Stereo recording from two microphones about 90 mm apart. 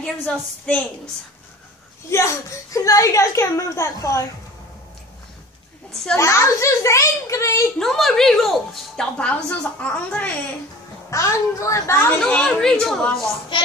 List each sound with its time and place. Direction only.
0.0 s a woman's voice: 10° left (ahead or behind)
2.0 s a woman's voice: 35° left (ahead or behind)
5.9 s a child's voice: 5° left (ahead or behind)
6.1 s a woman's voice: 35° left (ahead or behind)
7.8 s speech: 5° left (ahead or behind)
9.5 s a woman's voice: 15° left (ahead or behind)
11.1 s a woman's voice: 35° left (ahead or behind)
12.3 s a woman's voice: 10° left (ahead or behind)
13.5 s speech: 65° left (ahead or behind)